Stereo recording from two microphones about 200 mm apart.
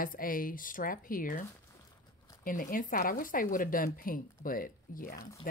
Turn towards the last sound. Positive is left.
turn(degrees=45)  # may be behind; listen again after turning